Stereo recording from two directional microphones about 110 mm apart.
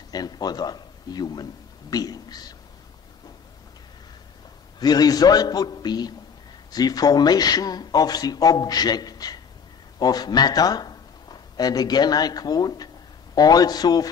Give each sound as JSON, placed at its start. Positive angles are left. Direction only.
{"t": 0.1, "sound": "a man's voice", "side_deg": 35}
{"t": 4.7, "sound": "a man's voice", "side_deg": 35}